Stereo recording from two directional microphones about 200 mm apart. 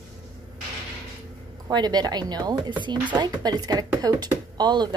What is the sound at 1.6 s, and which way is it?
Speech, 20° right (ahead or behind).